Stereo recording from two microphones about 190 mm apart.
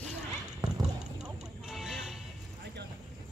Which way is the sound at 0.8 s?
5° right (ahead or behind).